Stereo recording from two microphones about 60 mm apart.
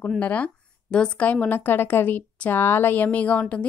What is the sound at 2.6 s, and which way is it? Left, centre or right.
Speech, left.